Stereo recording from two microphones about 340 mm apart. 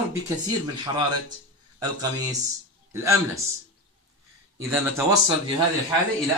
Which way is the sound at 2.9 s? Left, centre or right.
Centre.